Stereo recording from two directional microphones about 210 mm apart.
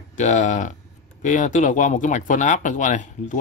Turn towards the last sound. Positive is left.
turn(degrees=35)  # may be behind; listen again after turning